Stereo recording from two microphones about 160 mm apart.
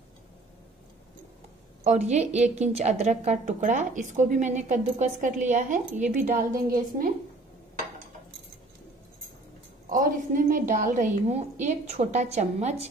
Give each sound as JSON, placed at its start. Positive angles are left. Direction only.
{"t": 1.9, "sound": "a woman's voice", "side_deg": -45}
{"t": 9.8, "sound": "a woman's voice", "side_deg": -55}